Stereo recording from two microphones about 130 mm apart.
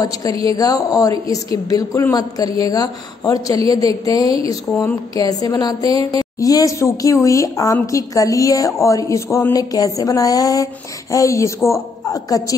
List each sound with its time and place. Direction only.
0.0 s a woman's voice: 25° left (ahead or behind)